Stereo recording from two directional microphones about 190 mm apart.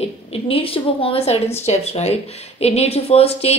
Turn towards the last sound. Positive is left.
turn(degrees=30)  # may be behind; listen again after turning